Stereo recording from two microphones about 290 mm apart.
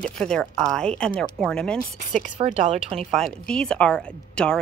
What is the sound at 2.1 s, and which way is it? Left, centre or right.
Speech, right.